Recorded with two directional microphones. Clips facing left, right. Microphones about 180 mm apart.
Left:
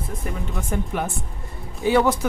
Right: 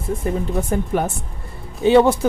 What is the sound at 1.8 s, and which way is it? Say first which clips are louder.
Speech: right 6 dB; 25° right (ahead or behind).